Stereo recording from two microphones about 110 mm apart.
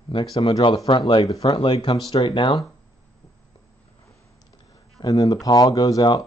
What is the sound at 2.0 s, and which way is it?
Speech, 55° left (ahead or behind).